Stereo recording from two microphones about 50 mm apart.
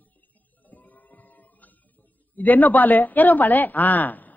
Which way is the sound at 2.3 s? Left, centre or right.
Left.